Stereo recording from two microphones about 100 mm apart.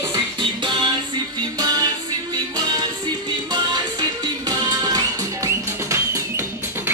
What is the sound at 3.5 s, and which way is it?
Music, 45° right (ahead or behind).